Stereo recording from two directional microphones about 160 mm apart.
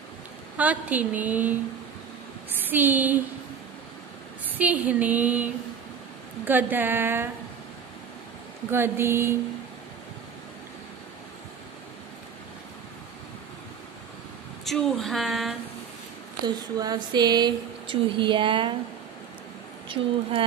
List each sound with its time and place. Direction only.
0.6 s a woman's voice: 10° right (ahead or behind)
2.6 s a woman's voice: 10° right (ahead or behind)
4.5 s a woman's voice: 10° right (ahead or behind)
8.6 s a woman's voice: 15° right (ahead or behind)
14.6 s speech: centre (ahead or behind)
16.4 s a sound: 25° right (ahead or behind)
19.9 s speech: 35° right (ahead or behind)